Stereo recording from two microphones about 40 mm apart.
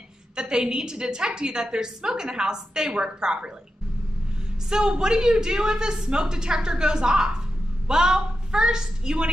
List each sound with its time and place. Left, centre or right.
0.4 s a woman's voice: centre
4.6 s a woman's voice: centre